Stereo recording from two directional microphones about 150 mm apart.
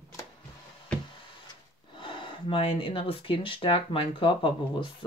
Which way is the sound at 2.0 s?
35° left (ahead or behind).